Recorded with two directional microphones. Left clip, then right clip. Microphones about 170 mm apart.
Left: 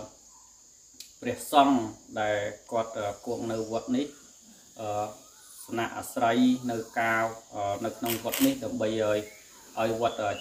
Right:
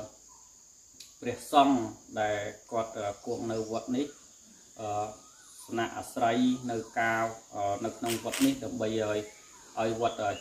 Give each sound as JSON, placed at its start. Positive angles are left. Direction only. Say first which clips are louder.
{"t": 0.9, "sound": "cricket", "louder": "left 2 dB", "side_deg": 0}
{"t": 2.1, "sound": "speech", "louder": "left 2 dB", "side_deg": 0}
{"t": 8.1, "sound": "speech", "louder": "left 2 dB", "side_deg": 40}
{"t": 8.5, "sound": "speech", "louder": "left 3 dB", "side_deg": 0}